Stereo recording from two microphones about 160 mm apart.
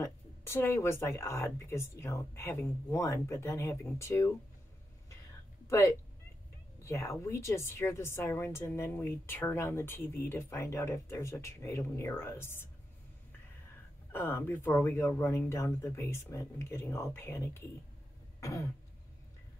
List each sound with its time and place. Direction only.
0.0 s a woman's voice: 15° left (ahead or behind)
5.7 s a woman's voice: 15° left (ahead or behind)
14.1 s a woman's voice: 15° left (ahead or behind)
18.4 s throat clearing: 20° left (ahead or behind)